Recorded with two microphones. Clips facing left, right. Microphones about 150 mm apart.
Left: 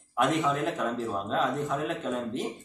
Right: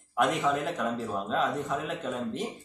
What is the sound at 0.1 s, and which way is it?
Speech, centre (ahead or behind).